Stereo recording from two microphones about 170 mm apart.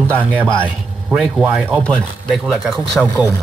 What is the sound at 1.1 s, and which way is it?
Speech, 5° right (ahead or behind).